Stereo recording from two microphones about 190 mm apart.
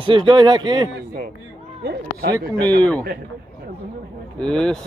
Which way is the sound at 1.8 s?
55° right (ahead or behind).